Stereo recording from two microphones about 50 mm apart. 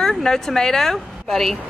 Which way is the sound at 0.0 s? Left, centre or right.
Centre.